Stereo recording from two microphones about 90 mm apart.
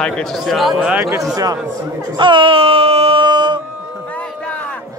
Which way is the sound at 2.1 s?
65° right (ahead or behind).